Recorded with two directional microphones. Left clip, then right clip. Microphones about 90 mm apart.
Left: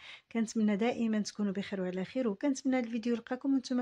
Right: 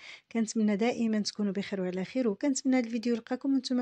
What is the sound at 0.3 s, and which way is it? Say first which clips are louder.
Speech: right 3 dB; 20° right (ahead or behind).